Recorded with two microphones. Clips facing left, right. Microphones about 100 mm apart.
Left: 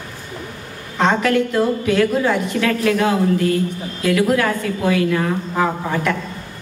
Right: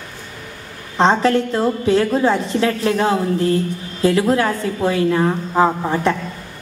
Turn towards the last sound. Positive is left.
turn(degrees=-25)  # may be behind; listen again after turning